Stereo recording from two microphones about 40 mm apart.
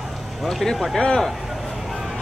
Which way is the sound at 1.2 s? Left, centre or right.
Centre.